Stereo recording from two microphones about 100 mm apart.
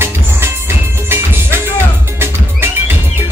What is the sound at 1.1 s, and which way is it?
Music, 25° right (ahead or behind).